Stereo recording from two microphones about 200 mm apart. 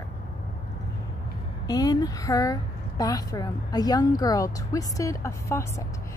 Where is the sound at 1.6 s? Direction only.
20° left (ahead or behind).